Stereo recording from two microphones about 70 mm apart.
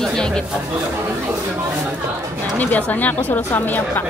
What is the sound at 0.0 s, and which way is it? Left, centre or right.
Chatter, centre.